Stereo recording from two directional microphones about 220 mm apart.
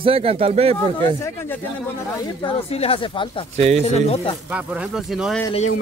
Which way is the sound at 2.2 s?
25° left (ahead or behind).